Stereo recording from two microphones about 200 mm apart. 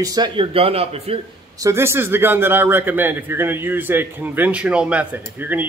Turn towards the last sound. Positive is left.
turn(degrees=-10)  # may be behind; listen again after turning